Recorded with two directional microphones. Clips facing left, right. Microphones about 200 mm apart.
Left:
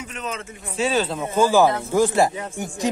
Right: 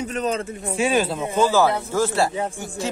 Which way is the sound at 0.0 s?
35° right (ahead or behind).